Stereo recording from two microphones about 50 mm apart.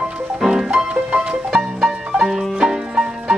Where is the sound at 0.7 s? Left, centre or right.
Right.